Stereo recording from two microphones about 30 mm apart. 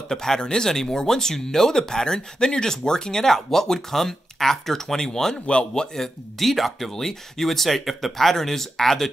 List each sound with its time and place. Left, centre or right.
0.1 s speech: centre
0.4 s speech: left
0.7 s speech: centre
3.3 s speech: centre
5.5 s a man's voice: left
5.9 s speech: centre